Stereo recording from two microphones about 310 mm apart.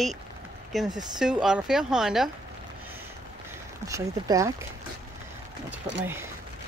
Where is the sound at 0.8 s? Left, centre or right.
Centre.